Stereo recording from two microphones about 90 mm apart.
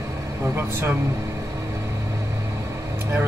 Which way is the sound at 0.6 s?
25° right (ahead or behind).